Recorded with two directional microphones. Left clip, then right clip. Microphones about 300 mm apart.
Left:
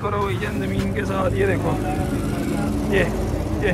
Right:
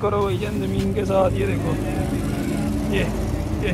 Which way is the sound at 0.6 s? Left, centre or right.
Centre.